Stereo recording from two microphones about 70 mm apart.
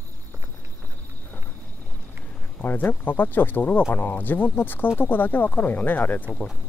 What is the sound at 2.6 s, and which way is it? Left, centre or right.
Speech, left.